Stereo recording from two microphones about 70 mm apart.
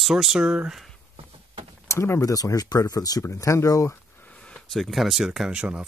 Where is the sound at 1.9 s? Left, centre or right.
Left.